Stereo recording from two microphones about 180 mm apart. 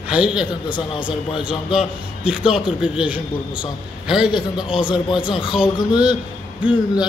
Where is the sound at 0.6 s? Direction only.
30° left (ahead or behind).